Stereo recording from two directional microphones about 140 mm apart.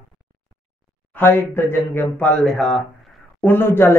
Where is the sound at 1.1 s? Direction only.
15° left (ahead or behind).